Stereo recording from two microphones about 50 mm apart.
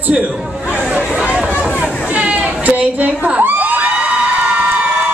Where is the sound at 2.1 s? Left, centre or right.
Right.